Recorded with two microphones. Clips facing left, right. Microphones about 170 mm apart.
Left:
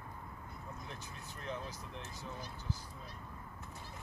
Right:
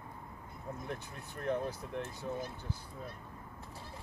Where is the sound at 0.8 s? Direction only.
55° right (ahead or behind).